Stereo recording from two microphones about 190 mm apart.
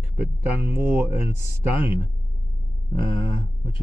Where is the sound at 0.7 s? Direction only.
10° right (ahead or behind).